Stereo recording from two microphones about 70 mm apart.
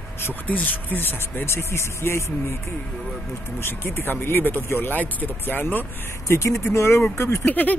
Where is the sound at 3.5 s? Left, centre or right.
Left.